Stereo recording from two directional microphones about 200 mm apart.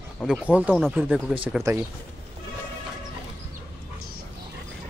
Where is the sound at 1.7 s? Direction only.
15° right (ahead or behind).